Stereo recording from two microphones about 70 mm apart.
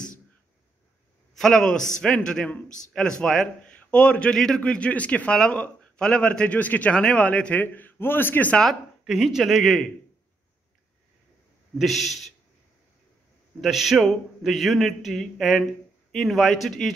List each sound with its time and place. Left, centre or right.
1.3 s a man's voice: centre; by 8.5 s left
9.0 s speech: centre
11.8 s speech: centre
13.6 s speech: centre